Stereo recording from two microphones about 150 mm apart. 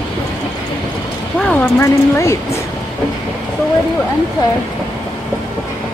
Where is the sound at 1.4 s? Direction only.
10° left (ahead or behind).